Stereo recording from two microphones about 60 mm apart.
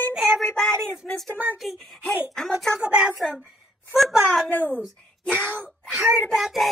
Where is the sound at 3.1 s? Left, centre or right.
Centre.